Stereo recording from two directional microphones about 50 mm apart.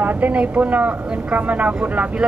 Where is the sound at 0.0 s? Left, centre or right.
Right.